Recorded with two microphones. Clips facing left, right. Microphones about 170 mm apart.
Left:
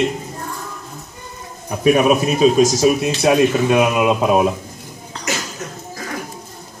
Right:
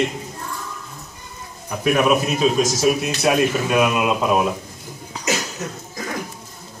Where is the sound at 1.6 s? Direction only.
20° left (ahead or behind).